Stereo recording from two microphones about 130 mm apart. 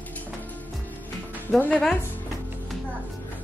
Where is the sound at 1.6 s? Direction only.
10° left (ahead or behind).